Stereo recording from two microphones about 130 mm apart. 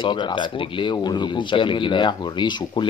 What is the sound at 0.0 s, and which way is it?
Speech, 35° left (ahead or behind).